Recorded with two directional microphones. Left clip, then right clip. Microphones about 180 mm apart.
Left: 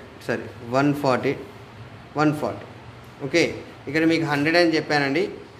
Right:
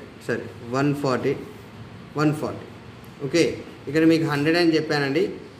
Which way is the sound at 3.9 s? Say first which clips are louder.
Right 1 dB; 10° left (ahead or behind).